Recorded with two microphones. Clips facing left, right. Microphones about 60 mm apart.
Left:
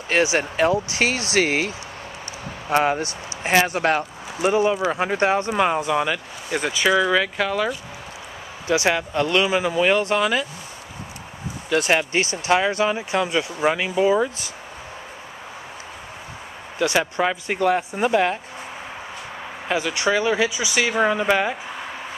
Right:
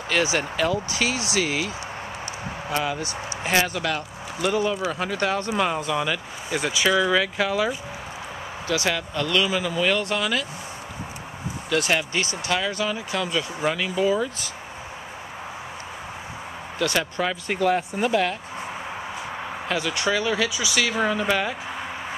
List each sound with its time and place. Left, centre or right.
0.1 s speech: left
3.4 s speech: left; by 7.7 s centre
8.6 s speech: left
11.7 s speech: left
16.7 s speech: centre
17.5 s speech: centre
19.7 s speech: centre